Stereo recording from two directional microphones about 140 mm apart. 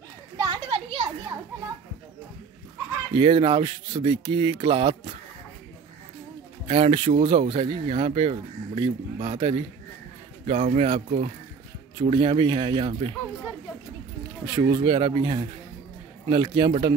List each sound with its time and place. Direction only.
0.4 s children playing: 35° right (ahead or behind)
3.2 s speech: 40° right (ahead or behind)
6.7 s speech: 45° right (ahead or behind)
14.4 s speech: 35° right (ahead or behind)